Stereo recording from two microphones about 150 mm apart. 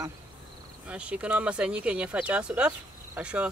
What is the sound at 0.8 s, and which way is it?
Speech, 5° right (ahead or behind).